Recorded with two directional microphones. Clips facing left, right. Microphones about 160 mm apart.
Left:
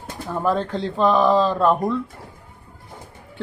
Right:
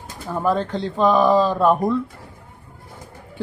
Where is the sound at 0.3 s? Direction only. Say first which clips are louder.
Right 1 dB; centre (ahead or behind).